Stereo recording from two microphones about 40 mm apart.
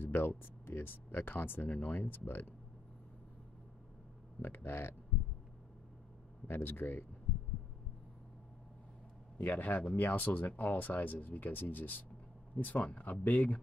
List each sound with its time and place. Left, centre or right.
0.0 s speech: left
1.7 s speech: left
2.0 s speech: left
4.4 s speech: left
6.6 s speech: left
9.4 s speech: left